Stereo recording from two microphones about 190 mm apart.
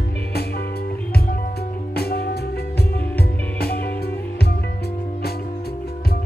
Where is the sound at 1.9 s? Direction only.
55° left (ahead or behind).